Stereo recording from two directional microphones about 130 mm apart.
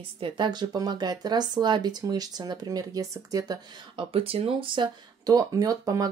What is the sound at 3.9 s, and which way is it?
Speech, 45° right (ahead or behind).